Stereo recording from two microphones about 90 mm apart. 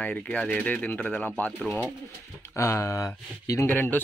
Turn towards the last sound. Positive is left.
turn(degrees=20)  # may be behind; listen again after turning